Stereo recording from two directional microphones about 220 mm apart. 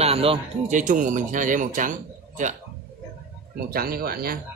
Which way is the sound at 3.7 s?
40° right (ahead or behind).